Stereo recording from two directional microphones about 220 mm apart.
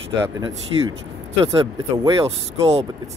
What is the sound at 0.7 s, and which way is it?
Speech, 20° right (ahead or behind).